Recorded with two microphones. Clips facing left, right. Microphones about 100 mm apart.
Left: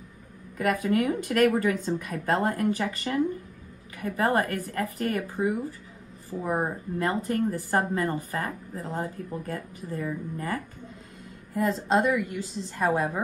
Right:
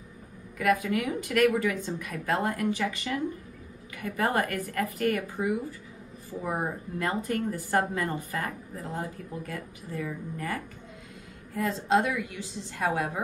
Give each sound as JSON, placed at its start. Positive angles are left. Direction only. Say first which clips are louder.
{"t": 0.6, "sound": "speech", "louder": "left 1 dB", "side_deg": 45}
{"t": 4.3, "sound": "a woman's voice", "louder": "left 2 dB", "side_deg": 30}
{"t": 11.9, "sound": "speech", "louder": "left 1 dB", "side_deg": 40}